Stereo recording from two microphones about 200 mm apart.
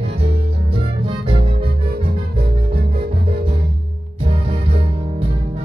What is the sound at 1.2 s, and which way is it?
Music, 25° right (ahead or behind).